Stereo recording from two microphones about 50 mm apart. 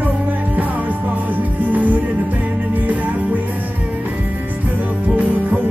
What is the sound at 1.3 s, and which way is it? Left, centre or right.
Music, right.